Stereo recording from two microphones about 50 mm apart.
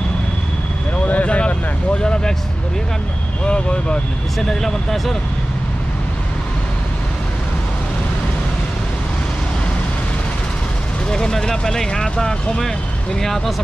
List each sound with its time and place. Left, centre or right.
1.0 s vehicle: left
3.4 s speech: left
4.4 s speech: centre
11.1 s speech: centre